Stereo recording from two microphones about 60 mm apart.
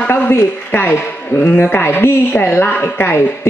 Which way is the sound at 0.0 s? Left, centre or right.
Left.